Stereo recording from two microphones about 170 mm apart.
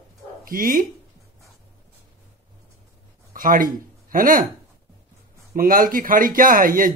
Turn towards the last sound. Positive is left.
turn(degrees=-55)  # may be behind; listen again after turning